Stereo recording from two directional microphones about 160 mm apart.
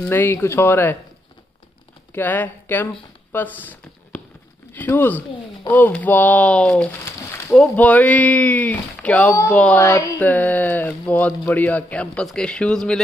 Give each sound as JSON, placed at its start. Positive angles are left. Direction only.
{"t": 0.1, "sound": "speech", "side_deg": 10}
{"t": 2.1, "sound": "speech", "side_deg": 10}
{"t": 9.3, "sound": "speech", "side_deg": 20}
{"t": 9.6, "sound": "speech", "side_deg": 10}